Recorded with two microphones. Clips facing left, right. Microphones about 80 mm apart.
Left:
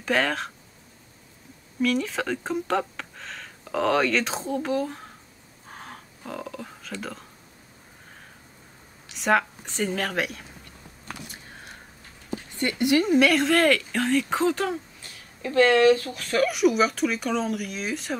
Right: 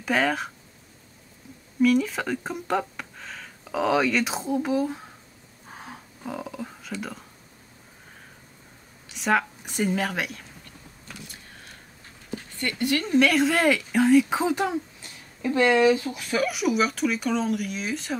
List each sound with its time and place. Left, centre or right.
0.0 s speech: centre
1.8 s speech: centre
5.7 s a sound: centre
9.1 s speech: centre
12.5 s speech: centre
13.1 s speech: centre